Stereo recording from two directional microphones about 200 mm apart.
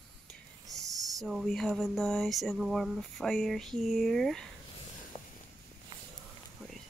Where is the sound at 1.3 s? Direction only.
Centre (ahead or behind).